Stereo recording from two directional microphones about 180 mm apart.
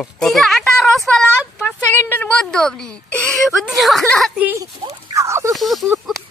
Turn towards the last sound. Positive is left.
turn(degrees=0)  # may be behind; listen again after turning